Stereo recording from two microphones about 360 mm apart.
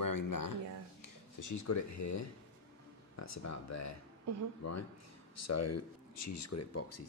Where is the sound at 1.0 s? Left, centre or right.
Left.